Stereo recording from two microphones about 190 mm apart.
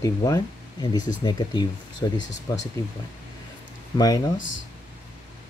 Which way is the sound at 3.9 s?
20° left (ahead or behind).